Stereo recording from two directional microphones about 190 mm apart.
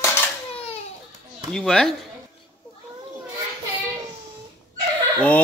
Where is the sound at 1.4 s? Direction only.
5° left (ahead or behind).